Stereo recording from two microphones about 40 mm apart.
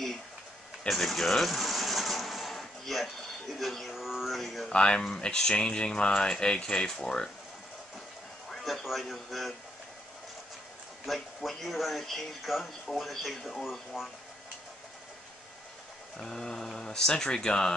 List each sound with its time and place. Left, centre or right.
0.8 s mechanisms: centre
3.5 s speech: centre
4.6 s speech: left
8.5 s a sound: centre
9.1 s speech: centre
11.1 s speech: centre
12.5 s speech: centre
13.9 s speech: centre
16.2 s speech: centre